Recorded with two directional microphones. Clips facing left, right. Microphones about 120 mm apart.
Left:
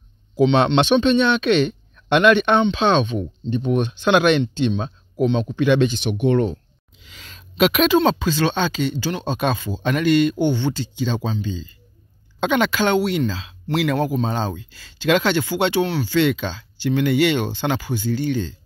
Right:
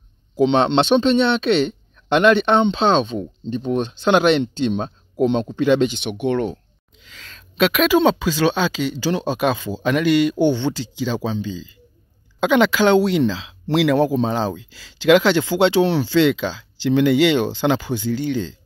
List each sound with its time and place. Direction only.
0.4 s speech: 30° right (ahead or behind)
7.2 s a sound: 10° left (ahead or behind)
7.9 s speech: 10° right (ahead or behind)
12.4 s speech: 15° right (ahead or behind)